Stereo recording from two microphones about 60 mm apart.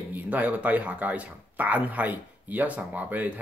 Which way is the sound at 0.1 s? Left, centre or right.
Right.